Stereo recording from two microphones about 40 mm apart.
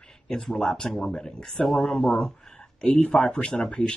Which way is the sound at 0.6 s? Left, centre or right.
Centre.